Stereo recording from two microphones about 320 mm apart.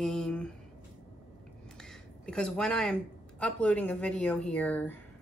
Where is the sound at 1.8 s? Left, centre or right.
Centre.